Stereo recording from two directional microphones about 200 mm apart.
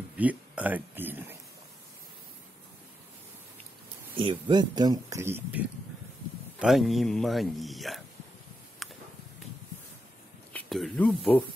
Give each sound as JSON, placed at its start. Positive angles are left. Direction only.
{"t": 0.2, "sound": "speech", "side_deg": -5}
{"t": 4.2, "sound": "a man's voice", "side_deg": -25}
{"t": 8.8, "sound": "a sound", "side_deg": 0}
{"t": 10.5, "sound": "speech", "side_deg": 5}